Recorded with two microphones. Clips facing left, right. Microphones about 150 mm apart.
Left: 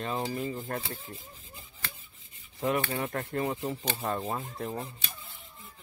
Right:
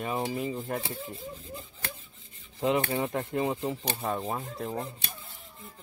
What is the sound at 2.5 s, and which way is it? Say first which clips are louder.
Rub: right 2 dB; 15° right (ahead or behind).